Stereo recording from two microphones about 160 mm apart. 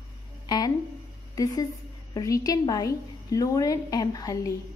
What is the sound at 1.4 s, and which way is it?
A woman's voice, 20° left (ahead or behind).